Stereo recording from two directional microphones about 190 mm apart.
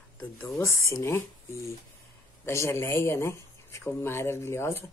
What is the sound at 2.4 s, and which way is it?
Speech, 15° left (ahead or behind).